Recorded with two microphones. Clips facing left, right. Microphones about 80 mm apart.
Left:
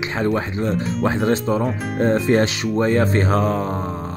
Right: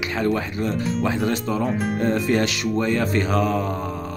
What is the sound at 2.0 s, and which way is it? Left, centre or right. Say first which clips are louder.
Speech: left 5 dB; left.